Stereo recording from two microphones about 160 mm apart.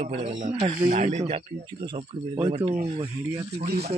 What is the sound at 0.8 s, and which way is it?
Speech, 45° right (ahead or behind).